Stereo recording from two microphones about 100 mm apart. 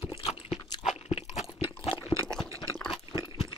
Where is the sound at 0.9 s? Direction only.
90° left.